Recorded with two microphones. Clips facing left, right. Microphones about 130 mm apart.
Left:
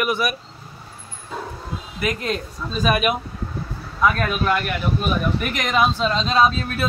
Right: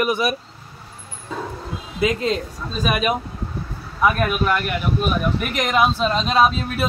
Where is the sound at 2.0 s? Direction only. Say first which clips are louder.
Right 4 dB; 20° right (ahead or behind).